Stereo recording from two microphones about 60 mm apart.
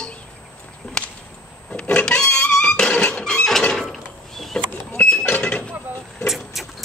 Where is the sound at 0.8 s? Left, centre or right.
Centre.